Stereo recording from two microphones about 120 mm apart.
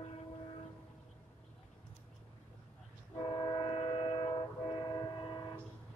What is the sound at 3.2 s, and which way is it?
Train, 45° left (ahead or behind).